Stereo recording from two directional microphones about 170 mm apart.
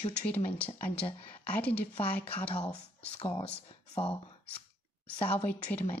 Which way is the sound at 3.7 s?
30° left (ahead or behind).